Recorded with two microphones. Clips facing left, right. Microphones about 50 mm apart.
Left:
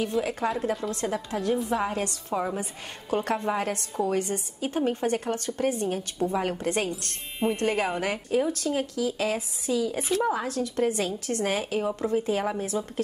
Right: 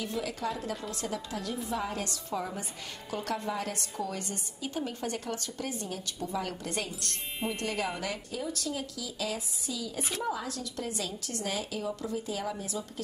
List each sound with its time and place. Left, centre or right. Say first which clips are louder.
0.2 s a woman's voice: left 7 dB; left